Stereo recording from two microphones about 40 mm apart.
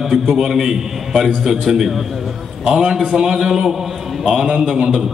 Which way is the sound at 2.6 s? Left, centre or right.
Right.